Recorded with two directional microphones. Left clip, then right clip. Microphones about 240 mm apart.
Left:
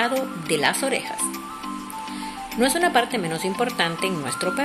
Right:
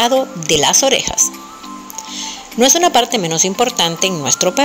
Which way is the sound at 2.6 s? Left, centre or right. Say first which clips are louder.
Right 8 dB; right.